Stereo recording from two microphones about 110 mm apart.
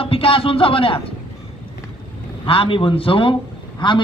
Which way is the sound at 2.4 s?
55° left (ahead or behind).